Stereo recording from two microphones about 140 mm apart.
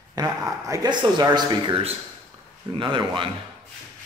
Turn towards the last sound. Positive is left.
turn(degrees=-35)  # may be behind; listen again after turning